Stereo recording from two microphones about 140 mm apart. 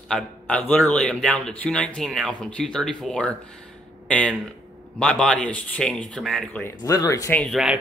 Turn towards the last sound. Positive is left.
turn(degrees=-5)  # may be behind; listen again after turning